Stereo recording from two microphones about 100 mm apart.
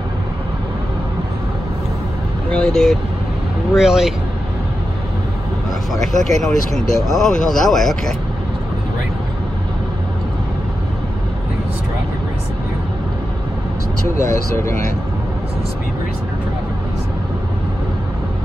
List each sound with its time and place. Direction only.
2.5 s speech: 5° left (ahead or behind)
6.2 s speech: centre (ahead or behind)
14.0 s speech: 30° left (ahead or behind)